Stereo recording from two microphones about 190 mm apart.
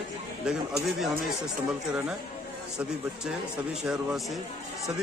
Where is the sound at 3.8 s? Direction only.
Centre (ahead or behind).